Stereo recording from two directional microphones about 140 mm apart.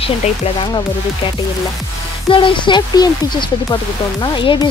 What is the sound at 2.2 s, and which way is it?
Speech, 35° left (ahead or behind).